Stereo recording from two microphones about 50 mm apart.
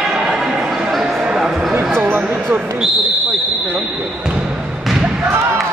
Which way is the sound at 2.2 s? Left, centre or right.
Right.